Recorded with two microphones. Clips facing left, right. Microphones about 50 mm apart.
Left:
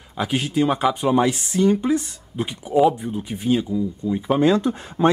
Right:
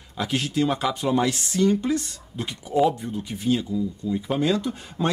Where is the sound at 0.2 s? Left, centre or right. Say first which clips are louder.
Left 3 dB; centre.